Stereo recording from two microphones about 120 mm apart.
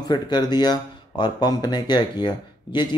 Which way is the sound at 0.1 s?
35° left (ahead or behind).